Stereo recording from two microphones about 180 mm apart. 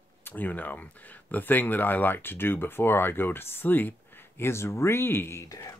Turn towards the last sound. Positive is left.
turn(degrees=20)  # may be behind; listen again after turning